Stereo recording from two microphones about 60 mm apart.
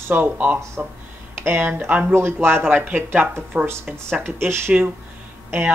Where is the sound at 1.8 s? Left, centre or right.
Right.